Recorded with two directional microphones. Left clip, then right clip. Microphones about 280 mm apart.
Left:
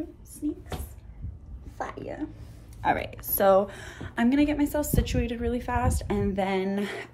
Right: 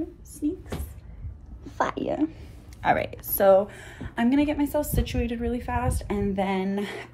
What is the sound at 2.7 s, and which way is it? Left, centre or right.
Speech, right.